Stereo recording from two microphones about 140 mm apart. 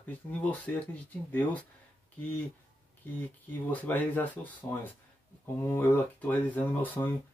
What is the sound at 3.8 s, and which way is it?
Speech, 10° left (ahead or behind).